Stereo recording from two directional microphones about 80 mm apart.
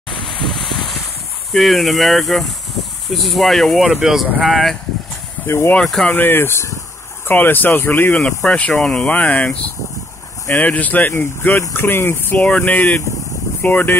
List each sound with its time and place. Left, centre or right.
0.3 s a sound: centre
1.5 s speech: centre
5.5 s speech: left